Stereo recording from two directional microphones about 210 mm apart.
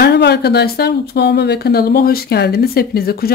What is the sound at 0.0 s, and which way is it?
Speech, 55° left (ahead or behind).